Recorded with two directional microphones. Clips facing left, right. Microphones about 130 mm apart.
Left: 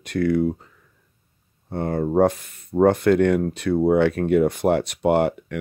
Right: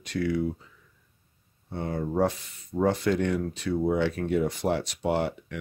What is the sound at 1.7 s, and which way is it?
Speech, 55° left (ahead or behind).